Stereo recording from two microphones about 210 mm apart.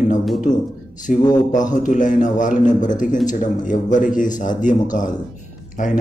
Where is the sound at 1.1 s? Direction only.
40° left (ahead or behind).